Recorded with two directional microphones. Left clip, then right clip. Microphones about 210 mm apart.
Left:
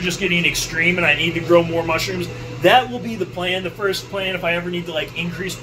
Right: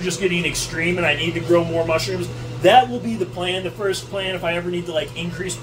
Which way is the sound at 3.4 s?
15° right (ahead or behind).